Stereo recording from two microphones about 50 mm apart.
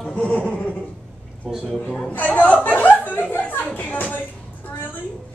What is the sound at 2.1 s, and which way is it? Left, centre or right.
Speech, left.